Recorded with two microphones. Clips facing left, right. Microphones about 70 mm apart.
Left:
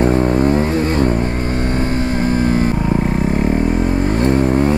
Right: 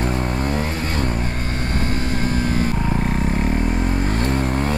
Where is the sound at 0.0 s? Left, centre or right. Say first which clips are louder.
Left 9 dB; left.